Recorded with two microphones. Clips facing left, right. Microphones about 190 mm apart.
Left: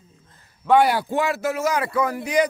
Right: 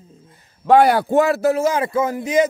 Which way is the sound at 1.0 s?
45° right (ahead or behind).